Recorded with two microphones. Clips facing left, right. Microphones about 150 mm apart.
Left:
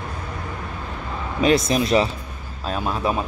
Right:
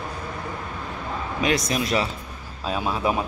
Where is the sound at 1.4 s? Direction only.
30° left (ahead or behind).